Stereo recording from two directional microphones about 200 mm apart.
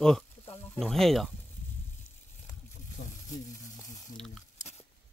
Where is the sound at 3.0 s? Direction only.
55° left (ahead or behind).